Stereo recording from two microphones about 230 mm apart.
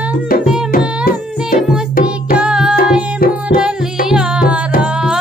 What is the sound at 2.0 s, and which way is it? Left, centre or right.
Music, centre.